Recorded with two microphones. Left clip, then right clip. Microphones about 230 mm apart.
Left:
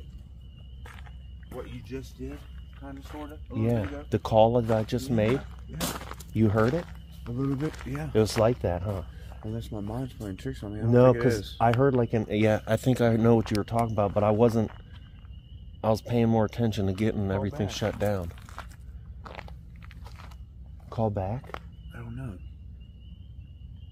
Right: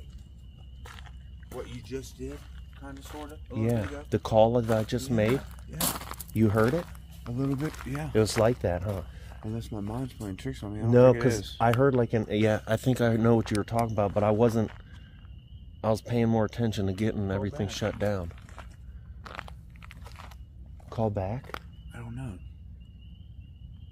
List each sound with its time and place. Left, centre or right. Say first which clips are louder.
1.5 s speech: right 1 dB; right
4.1 s speech: left 1 dB; centre
5.3 s a sound: even; right
6.3 s speech: even; centre
6.7 s speech: even; right
8.5 s speech: even; centre
8.9 s speech: even; right
10.9 s speech: even; centre
15.8 s speech: left 2 dB; centre
19.2 s biting: right 1 dB; centre
20.9 s speech: left 1 dB; centre
21.5 s a sound: even; right